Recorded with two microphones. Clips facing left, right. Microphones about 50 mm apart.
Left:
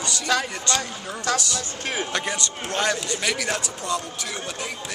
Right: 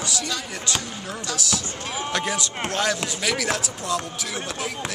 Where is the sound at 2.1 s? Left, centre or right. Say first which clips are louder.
Right 1 dB; centre.